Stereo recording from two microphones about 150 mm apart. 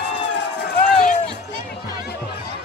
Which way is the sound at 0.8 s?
55° left (ahead or behind).